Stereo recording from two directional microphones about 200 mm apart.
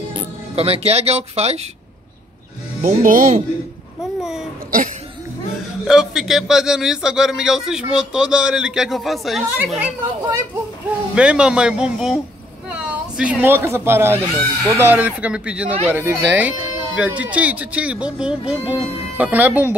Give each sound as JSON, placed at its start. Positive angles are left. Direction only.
{"t": 0.1, "sound": "speech", "side_deg": -30}
{"t": 2.8, "sound": "speech", "side_deg": -40}
{"t": 5.9, "sound": "speech", "side_deg": -5}
{"t": 11.1, "sound": "speech", "side_deg": -5}